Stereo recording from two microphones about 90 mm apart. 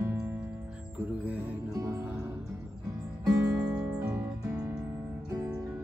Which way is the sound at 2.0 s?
20° right (ahead or behind).